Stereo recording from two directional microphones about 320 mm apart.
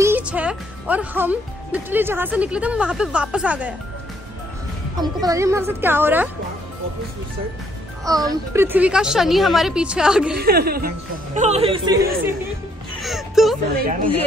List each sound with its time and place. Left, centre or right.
0.0 s speech: centre
4.9 s a woman's voice: centre
8.1 s speech: centre
10.3 s a woman's voice: right; by 13.6 s centre